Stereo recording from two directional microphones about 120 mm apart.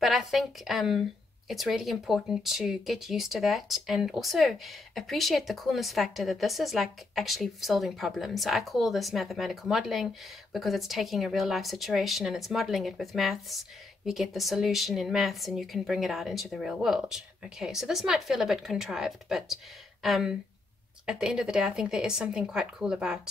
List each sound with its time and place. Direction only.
0.0 s a woman's voice: centre (ahead or behind)